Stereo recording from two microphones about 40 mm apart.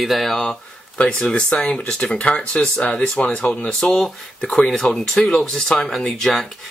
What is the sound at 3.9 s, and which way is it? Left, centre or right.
Speech, centre.